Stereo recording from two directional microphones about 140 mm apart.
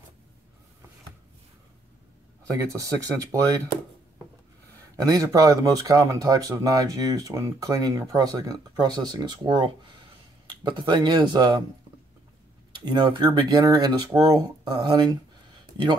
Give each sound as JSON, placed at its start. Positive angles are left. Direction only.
{"t": 2.5, "sound": "speech", "side_deg": -25}
{"t": 4.9, "sound": "speech", "side_deg": -25}
{"t": 12.8, "sound": "speech", "side_deg": -30}